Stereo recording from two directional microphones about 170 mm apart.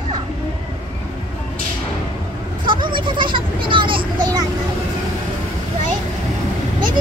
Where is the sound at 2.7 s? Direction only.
30° right (ahead or behind).